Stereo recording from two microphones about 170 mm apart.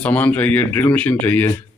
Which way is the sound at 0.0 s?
10° left (ahead or behind).